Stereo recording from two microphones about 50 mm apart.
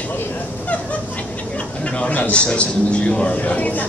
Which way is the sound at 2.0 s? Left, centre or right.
Left.